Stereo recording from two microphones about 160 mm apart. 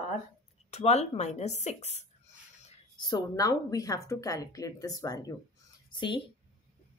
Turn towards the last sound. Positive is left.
turn(degrees=30)  # may be behind; listen again after turning